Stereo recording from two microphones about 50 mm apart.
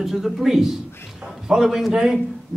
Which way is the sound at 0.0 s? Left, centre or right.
Centre.